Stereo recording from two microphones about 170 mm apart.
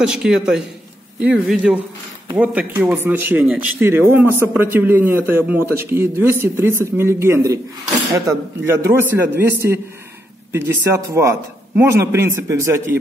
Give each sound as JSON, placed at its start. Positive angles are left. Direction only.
{"t": 0.0, "sound": "a man's voice", "side_deg": -5}